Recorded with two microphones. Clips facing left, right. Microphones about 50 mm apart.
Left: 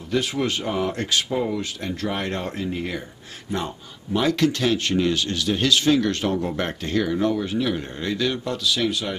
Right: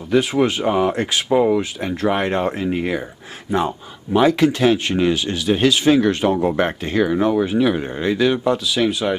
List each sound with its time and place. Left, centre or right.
0.1 s speech: centre